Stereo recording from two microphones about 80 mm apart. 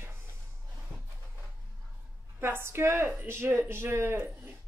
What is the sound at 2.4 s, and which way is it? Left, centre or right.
A woman's voice, right.